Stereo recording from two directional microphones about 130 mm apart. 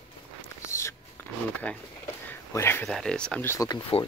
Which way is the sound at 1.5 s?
10° left (ahead or behind).